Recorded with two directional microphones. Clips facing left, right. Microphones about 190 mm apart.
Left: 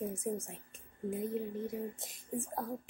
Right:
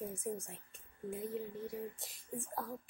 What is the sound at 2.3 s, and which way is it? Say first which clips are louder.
Speech: left 6 dB; 25° left (ahead or behind).